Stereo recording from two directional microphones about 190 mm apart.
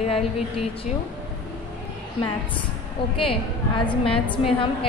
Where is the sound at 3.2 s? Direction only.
25° left (ahead or behind).